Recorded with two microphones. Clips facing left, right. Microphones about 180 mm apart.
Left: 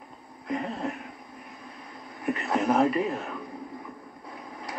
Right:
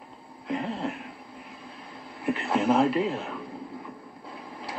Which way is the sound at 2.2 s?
30° right (ahead or behind).